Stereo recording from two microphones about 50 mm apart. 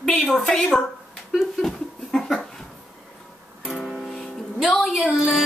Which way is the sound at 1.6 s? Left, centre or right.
Centre.